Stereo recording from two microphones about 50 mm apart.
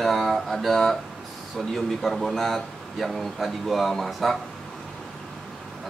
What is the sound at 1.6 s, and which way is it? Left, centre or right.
Speech, centre.